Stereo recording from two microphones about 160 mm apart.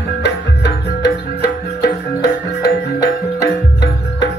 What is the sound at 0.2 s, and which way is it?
Music, 90° left.